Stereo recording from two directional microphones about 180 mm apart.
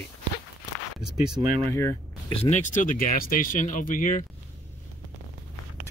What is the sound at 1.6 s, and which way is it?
Speech, 15° left (ahead or behind).